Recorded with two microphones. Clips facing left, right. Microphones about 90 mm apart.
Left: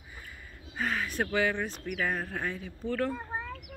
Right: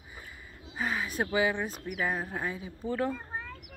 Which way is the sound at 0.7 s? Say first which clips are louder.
Even; 5° right (ahead or behind).